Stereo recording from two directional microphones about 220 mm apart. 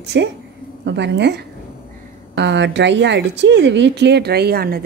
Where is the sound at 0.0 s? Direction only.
50° right (ahead or behind).